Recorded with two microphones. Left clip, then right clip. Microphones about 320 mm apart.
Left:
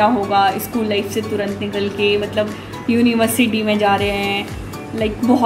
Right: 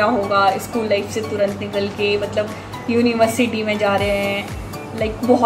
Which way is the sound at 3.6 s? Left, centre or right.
Centre.